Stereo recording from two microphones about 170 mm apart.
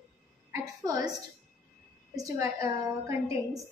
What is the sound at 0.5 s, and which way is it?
Speech, 20° right (ahead or behind).